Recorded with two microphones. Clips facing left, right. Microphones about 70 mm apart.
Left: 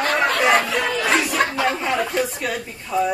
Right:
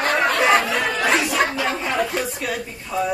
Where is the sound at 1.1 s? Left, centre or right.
Centre.